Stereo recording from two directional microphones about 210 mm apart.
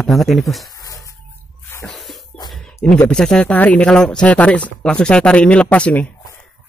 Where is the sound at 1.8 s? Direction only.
Centre (ahead or behind).